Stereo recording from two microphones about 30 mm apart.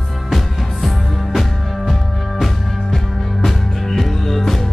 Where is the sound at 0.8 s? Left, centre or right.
Centre.